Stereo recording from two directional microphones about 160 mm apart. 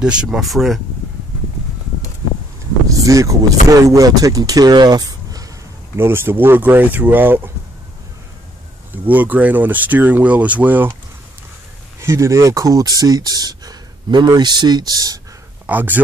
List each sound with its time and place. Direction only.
0.0 s speech: 5° right (ahead or behind)
2.9 s speech: 20° right (ahead or behind)
9.1 s speech: 10° right (ahead or behind)
12.0 s speech: 20° right (ahead or behind)
15.6 s speech: 10° right (ahead or behind)